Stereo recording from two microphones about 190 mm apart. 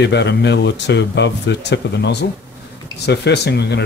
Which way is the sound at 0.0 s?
65° left (ahead or behind).